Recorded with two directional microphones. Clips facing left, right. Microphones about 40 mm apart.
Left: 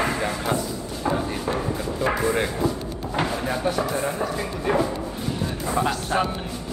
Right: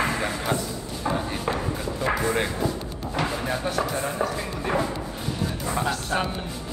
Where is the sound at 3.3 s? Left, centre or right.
Centre.